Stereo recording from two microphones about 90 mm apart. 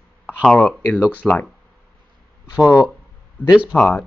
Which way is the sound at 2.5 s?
15° right (ahead or behind).